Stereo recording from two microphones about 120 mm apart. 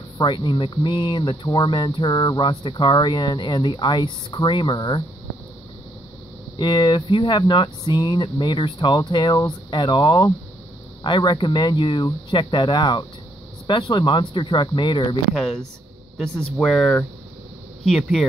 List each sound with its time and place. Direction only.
0.2 s speech: 40° left (ahead or behind)
6.6 s speech: 40° left (ahead or behind)
15.3 s speech: centre (ahead or behind)